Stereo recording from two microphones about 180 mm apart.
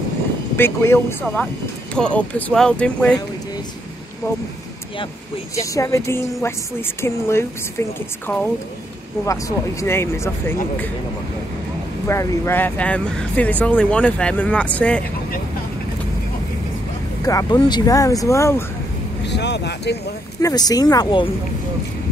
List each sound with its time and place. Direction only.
0.6 s speech: 15° left (ahead or behind)
5.6 s speech: 15° left (ahead or behind)
9.2 s speech: 15° left (ahead or behind)
12.1 s speech: 15° left (ahead or behind)
17.2 s speech: 20° left (ahead or behind)
19.2 s speech: 70° left (ahead or behind)
20.4 s speech: 20° left (ahead or behind)